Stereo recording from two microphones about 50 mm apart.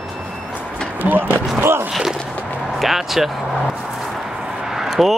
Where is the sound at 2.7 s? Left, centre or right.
Centre.